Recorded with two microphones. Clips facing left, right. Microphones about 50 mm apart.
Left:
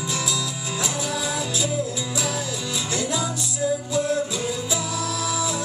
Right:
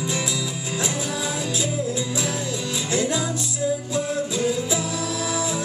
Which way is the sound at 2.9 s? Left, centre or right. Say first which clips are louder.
Right 3 dB; centre.